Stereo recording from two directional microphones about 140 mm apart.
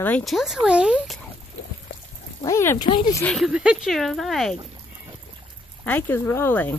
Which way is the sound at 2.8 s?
30° left (ahead or behind).